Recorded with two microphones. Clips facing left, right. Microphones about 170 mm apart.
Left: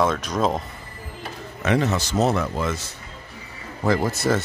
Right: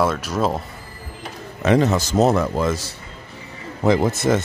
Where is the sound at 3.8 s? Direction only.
20° right (ahead or behind).